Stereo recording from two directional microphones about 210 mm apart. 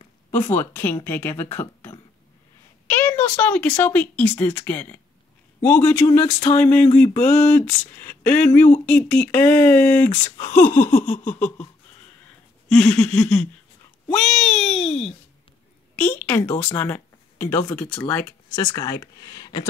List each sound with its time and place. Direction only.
0.3 s speech: 10° left (ahead or behind)
10.9 s a sound: 35° left (ahead or behind)
11.3 s speech: 5° left (ahead or behind)
12.6 s speech: 5° left (ahead or behind)